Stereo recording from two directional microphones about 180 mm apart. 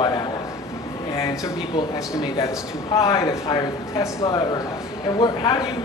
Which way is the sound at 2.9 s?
20° left (ahead or behind).